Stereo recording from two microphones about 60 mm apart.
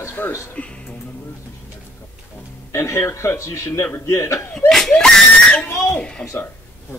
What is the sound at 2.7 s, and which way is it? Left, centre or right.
Speech, left.